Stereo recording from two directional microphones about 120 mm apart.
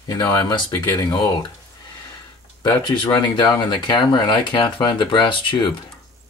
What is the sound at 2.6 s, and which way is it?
Speech, 35° left (ahead or behind).